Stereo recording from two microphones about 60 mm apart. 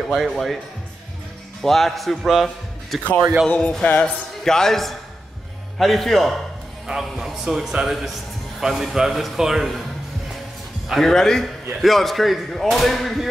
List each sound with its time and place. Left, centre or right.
0.1 s speech: centre
1.6 s a man's voice: centre
3.4 s speech: left
4.5 s speech: centre
10.9 s speech: centre